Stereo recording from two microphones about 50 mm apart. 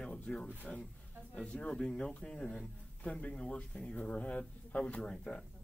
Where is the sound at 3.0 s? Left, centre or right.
Left.